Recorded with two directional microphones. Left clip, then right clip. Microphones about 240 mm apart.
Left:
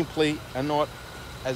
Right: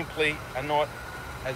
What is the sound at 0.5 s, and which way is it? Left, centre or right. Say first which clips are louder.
Speech: left 1 dB; left.